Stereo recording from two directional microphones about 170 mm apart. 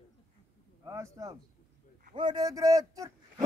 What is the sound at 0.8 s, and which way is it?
Speech, 20° right (ahead or behind).